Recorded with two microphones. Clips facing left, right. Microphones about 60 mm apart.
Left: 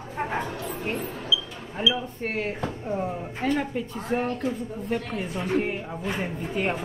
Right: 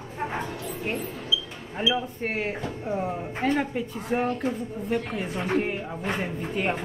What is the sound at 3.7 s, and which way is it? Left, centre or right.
Speech, centre.